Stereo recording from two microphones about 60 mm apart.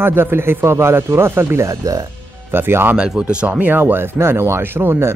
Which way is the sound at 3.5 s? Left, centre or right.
Right.